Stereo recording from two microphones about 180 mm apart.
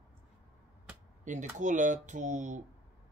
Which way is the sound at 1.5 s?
45° right (ahead or behind).